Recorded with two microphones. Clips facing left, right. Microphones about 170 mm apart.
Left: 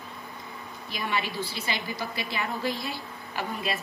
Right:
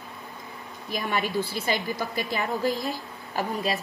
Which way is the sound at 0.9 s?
45° right (ahead or behind).